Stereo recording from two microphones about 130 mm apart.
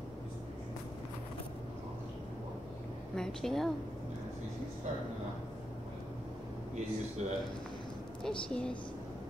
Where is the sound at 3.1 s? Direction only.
5° left (ahead or behind).